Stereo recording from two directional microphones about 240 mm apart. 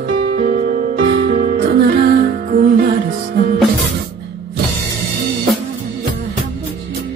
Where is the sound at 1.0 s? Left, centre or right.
Right.